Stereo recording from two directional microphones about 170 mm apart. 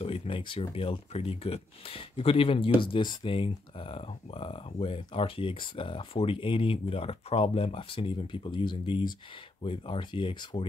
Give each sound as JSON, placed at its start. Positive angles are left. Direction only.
{"t": 0.0, "sound": "speech", "side_deg": 35}